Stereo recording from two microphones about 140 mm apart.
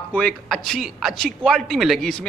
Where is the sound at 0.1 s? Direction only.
5° left (ahead or behind).